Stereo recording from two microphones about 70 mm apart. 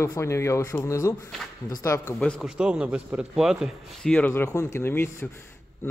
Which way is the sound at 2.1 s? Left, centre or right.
Centre.